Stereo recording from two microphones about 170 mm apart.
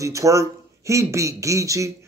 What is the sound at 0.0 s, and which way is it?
A man's voice, 20° right (ahead or behind).